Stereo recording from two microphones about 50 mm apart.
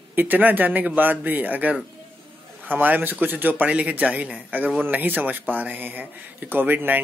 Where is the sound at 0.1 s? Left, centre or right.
Right.